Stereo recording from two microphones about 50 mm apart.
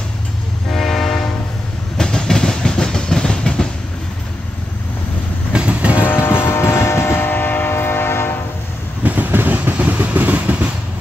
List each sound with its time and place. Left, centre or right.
0.7 s train: centre
5.5 s train: right
6.0 s music: left
7.2 s train: left
7.7 s train: left
9.0 s vehicle: right